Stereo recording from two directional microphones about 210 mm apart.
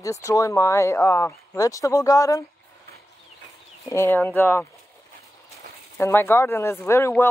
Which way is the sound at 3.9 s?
10° left (ahead or behind).